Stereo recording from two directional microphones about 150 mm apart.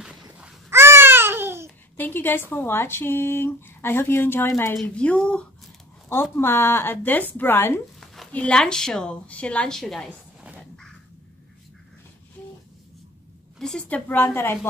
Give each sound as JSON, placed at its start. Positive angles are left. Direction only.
{"t": 0.7, "sound": "babbling", "side_deg": -15}
{"t": 2.0, "sound": "a woman's voice", "side_deg": 15}
{"t": 13.6, "sound": "speech", "side_deg": 5}